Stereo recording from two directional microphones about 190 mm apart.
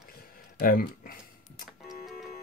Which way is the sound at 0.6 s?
50° left (ahead or behind).